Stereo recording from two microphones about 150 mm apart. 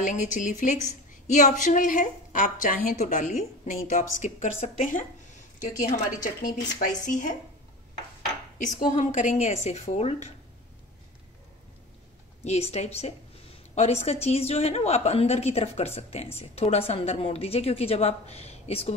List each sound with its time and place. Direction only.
0.0 s a woman's voice: 55° left (ahead or behind)
8.5 s a woman's voice: 60° left (ahead or behind)
12.4 s a woman's voice: 45° left (ahead or behind)